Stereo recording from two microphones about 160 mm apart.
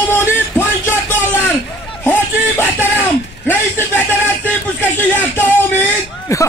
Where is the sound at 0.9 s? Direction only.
15° left (ahead or behind).